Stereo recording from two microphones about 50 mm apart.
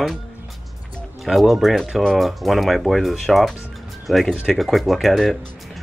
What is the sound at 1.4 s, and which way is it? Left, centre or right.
Speech, centre.